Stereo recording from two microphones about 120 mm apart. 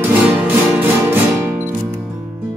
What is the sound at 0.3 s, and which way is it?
Music, 15° right (ahead or behind).